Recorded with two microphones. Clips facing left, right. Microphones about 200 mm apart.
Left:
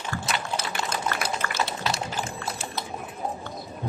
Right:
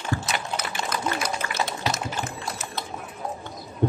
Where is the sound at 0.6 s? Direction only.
30° left (ahead or behind).